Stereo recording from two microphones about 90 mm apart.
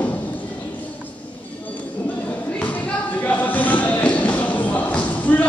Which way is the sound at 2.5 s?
15° left (ahead or behind).